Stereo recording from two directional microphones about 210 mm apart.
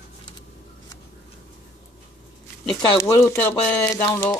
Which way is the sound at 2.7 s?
15° left (ahead or behind).